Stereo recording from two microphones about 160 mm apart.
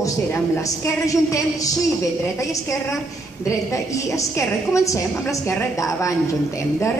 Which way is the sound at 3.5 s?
20° left (ahead or behind).